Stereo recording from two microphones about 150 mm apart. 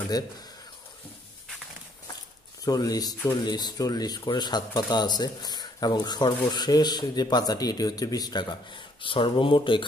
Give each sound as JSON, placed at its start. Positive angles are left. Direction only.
{"t": 0.1, "sound": "speech", "side_deg": 25}
{"t": 2.6, "sound": "speech", "side_deg": 25}